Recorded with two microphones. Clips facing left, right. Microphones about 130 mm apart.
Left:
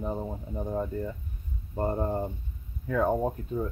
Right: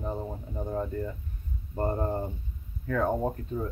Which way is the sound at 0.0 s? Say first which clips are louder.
Left 1 dB; 5° left (ahead or behind).